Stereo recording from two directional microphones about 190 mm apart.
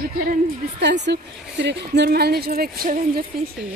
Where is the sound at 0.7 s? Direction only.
65° right (ahead or behind).